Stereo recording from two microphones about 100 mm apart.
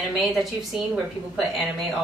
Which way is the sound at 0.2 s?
5° right (ahead or behind).